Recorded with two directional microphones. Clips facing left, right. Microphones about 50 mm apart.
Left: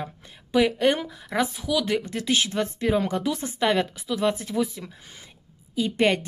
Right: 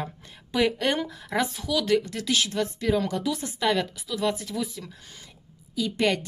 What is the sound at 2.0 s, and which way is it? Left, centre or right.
A woman's voice, left.